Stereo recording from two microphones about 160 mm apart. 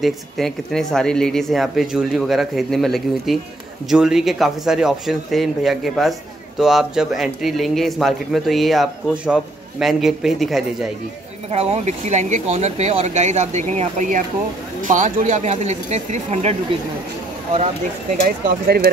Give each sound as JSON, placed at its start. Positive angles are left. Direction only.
{"t": 0.0, "sound": "a man's voice", "side_deg": 0}
{"t": 11.5, "sound": "speech", "side_deg": -40}